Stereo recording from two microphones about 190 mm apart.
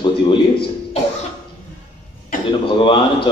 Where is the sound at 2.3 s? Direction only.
45° left (ahead or behind).